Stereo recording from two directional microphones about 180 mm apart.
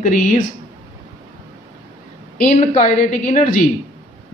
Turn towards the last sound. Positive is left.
turn(degrees=45)  # may be behind; listen again after turning